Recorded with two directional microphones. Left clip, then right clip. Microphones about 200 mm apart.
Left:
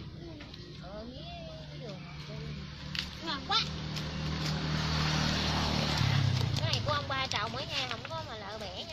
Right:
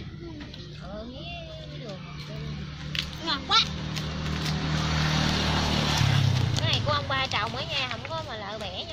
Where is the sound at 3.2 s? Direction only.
20° right (ahead or behind).